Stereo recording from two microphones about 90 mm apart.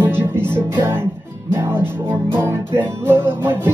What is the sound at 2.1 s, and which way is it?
Music, 25° right (ahead or behind).